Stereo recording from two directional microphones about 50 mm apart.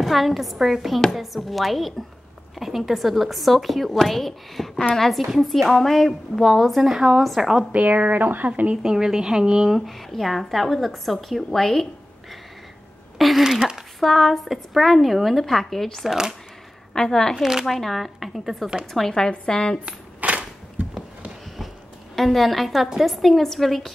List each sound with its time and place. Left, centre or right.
0.0 s a woman's voice: centre
6.8 s speech: centre
7.7 s speech: right
8.8 s speech: centre
9.7 s a woman's voice: centre
13.4 s speech: centre
13.9 s a woman's voice: centre
16.1 s speech: centre
16.9 s a woman's voice: centre
17.4 s speech: centre
17.6 s a woman's voice: centre
18.9 s a woman's voice: centre
20.2 s cap gun: right
22.1 s a woman's voice: centre